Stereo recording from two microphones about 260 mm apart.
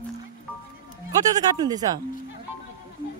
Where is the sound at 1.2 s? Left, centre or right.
Centre.